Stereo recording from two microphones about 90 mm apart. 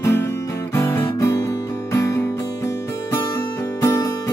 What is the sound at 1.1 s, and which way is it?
Music, 40° left (ahead or behind).